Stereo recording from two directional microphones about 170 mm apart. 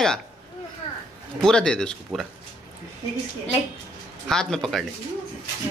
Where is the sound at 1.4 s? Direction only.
5° left (ahead or behind).